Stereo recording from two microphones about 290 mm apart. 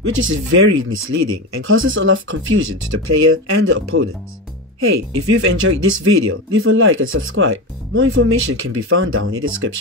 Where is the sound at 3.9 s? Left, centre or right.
Right.